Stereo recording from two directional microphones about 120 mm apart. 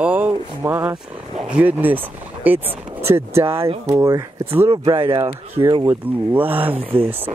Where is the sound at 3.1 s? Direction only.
20° right (ahead or behind).